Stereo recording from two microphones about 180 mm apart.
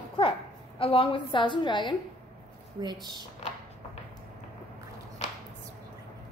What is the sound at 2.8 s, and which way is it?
Speech, 25° right (ahead or behind).